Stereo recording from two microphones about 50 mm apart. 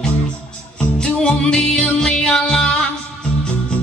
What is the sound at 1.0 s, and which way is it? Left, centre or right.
Music, centre.